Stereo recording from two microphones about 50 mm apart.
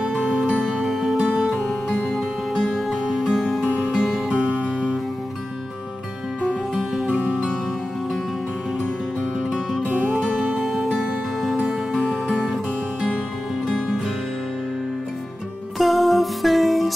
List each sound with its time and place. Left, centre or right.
0.2 s music: centre
1.2 s music: centre
1.5 s music: centre
4.4 s music: right
6.7 s music: centre
7.1 s music: right
9.8 s music: right
10.3 s music: right
10.6 s music: centre
13.7 s music: centre
15.8 s music: centre